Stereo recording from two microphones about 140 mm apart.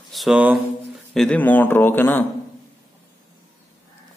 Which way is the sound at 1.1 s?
5° left (ahead or behind).